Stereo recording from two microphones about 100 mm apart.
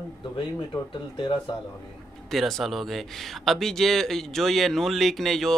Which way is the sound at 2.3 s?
Centre (ahead or behind).